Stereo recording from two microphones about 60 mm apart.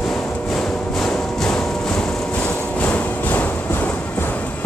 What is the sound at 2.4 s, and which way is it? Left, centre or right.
Music, left.